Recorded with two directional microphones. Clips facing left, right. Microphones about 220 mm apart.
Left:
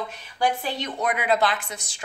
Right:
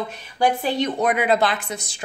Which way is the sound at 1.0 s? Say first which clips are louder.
Right 1 dB; 30° right (ahead or behind).